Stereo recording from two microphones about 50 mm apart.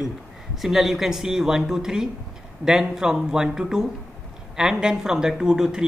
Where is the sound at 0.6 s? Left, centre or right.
Centre.